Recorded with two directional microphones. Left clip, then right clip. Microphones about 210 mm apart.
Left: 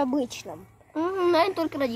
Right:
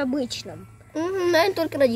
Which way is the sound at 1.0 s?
60° right (ahead or behind).